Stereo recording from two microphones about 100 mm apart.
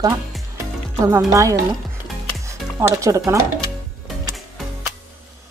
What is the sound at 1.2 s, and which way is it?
A woman's voice, 35° right (ahead or behind).